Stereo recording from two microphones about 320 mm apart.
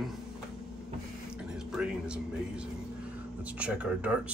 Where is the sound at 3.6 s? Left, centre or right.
Centre.